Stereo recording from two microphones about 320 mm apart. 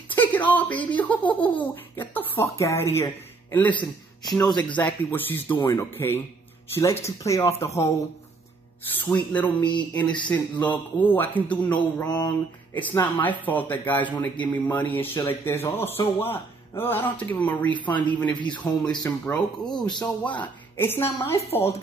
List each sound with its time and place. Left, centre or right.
0.1 s speech: centre
9.0 s a man's voice: centre
21.5 s speech: centre